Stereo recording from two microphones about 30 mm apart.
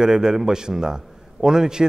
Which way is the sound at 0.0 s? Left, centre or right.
Centre.